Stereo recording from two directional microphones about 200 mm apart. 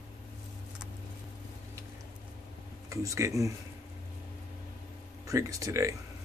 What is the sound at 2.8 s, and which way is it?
Speech, 15° right (ahead or behind).